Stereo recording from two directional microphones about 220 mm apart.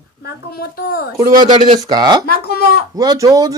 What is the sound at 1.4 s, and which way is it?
Speech, 20° right (ahead or behind).